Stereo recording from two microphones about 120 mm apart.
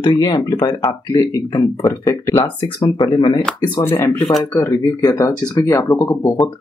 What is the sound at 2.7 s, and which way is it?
Speech, 40° left (ahead or behind).